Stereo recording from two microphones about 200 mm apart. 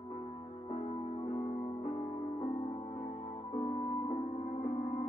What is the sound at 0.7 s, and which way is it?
Music, 35° left (ahead or behind).